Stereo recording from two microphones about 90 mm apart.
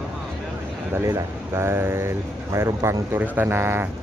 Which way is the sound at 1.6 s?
30° right (ahead or behind).